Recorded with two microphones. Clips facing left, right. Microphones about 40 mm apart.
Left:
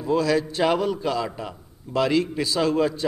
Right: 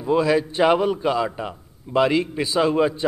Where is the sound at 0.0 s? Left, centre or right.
Right.